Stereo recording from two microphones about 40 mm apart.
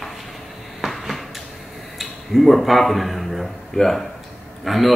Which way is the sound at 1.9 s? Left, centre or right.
Centre.